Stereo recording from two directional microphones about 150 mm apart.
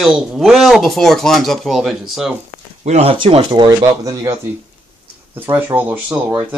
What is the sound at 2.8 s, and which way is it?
Speech, 45° right (ahead or behind).